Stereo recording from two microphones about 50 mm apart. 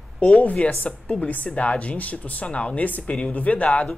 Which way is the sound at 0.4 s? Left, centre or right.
Left.